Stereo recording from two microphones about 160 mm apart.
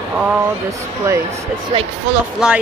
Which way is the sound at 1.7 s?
35° right (ahead or behind).